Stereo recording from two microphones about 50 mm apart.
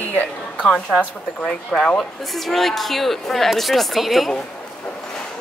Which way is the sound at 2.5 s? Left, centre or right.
Centre.